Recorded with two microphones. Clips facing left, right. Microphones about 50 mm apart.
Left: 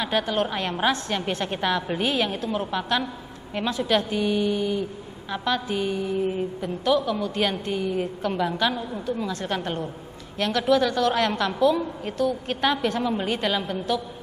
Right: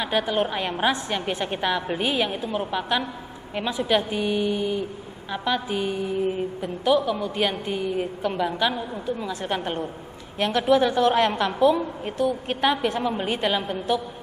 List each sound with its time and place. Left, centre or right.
0.0 s a woman's voice: centre